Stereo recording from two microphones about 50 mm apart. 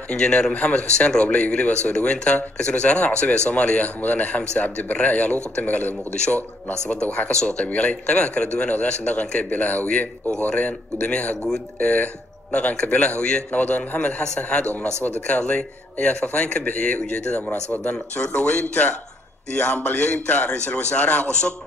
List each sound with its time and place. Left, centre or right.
0.1 s a man's voice: left
18.1 s speech: left
19.9 s speech: left